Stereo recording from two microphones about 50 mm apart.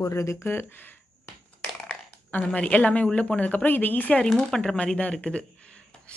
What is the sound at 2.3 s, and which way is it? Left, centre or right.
A woman's voice, left.